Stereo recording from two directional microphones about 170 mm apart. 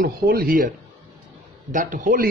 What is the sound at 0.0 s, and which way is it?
Speech, 60° right (ahead or behind).